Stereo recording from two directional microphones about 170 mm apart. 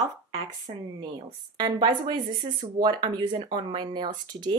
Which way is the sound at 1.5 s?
25° right (ahead or behind).